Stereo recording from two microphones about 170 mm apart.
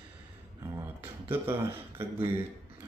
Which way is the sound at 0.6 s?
15° right (ahead or behind).